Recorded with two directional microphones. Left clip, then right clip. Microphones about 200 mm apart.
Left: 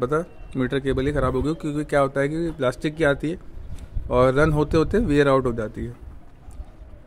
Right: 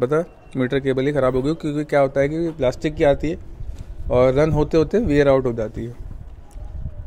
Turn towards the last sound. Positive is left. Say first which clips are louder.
# right 3 dB
turn(degrees=-5)  # may be behind; listen again after turning